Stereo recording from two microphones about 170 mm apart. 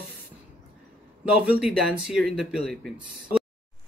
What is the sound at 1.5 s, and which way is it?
Speech, 5° right (ahead or behind).